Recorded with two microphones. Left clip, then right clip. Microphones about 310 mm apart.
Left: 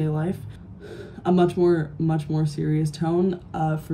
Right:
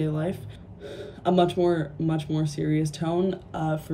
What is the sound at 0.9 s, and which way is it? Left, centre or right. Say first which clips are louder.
Speech: left 1 dB; centre.